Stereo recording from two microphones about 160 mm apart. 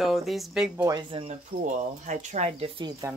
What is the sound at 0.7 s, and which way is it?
Speech, 20° right (ahead or behind).